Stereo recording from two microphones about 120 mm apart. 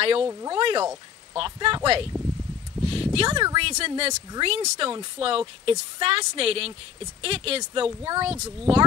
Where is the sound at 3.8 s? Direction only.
55° right (ahead or behind).